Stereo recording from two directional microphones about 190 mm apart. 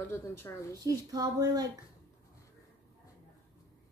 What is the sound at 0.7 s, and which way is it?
Speech, 20° right (ahead or behind).